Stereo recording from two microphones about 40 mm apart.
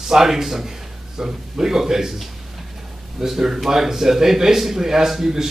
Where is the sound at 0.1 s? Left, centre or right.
Centre.